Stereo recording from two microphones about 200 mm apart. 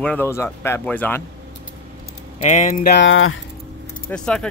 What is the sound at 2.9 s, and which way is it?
Speech, 75° left (ahead or behind).